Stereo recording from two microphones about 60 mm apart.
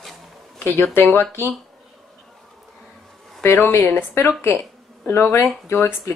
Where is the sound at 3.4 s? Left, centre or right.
Left.